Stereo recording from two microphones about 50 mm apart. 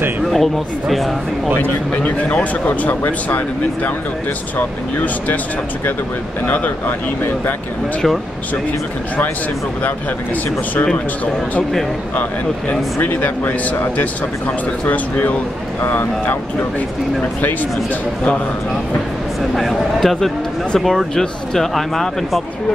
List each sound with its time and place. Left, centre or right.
0.3 s speech: centre
1.6 s speech: left
6.4 s speech: left
12.2 s speech: left
19.5 s speech: centre